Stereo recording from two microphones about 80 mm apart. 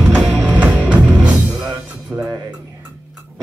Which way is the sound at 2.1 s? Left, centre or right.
Right.